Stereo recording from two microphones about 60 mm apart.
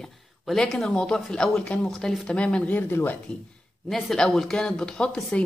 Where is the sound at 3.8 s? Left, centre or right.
Centre.